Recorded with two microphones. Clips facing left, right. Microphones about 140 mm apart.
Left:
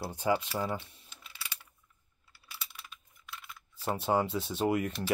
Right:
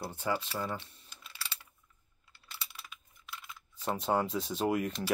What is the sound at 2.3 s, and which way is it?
Computer keyboard, 5° left (ahead or behind).